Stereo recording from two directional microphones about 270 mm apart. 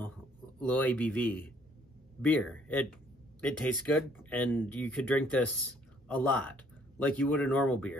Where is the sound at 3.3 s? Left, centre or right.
Centre.